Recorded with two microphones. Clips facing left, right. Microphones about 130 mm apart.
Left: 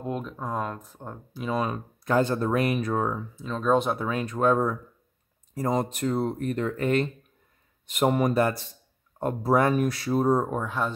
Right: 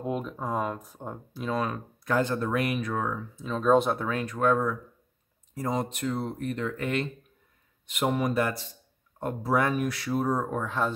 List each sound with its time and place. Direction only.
0.0 s speech: 5° right (ahead or behind)
1.4 s speech: 15° left (ahead or behind)
3.3 s speech: centre (ahead or behind)
4.0 s speech: 20° left (ahead or behind)
5.5 s speech: 40° left (ahead or behind); by 10.6 s 25° left (ahead or behind)
10.6 s speech: 5° left (ahead or behind)